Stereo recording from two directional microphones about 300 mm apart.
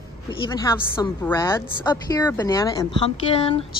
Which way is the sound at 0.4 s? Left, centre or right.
Centre.